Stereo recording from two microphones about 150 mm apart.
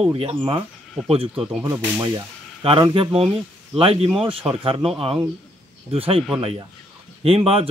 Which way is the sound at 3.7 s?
40° right (ahead or behind).